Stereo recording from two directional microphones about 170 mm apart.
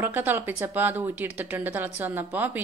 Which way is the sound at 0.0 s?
10° right (ahead or behind).